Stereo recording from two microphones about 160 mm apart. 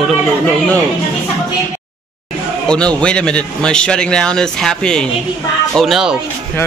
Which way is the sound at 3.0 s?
5° left (ahead or behind).